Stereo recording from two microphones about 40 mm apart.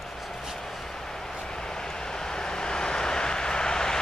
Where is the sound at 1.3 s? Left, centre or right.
Centre.